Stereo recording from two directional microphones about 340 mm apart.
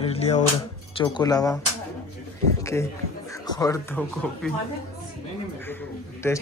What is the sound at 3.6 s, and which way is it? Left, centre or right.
Speech, centre.